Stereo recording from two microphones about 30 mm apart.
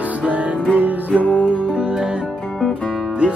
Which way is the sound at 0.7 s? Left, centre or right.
Right.